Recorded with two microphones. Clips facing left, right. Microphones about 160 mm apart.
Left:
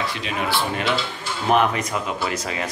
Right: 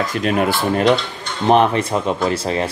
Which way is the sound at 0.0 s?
45° right (ahead or behind).